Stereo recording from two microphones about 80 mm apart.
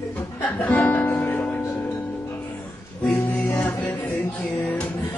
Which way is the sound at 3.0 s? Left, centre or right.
Left.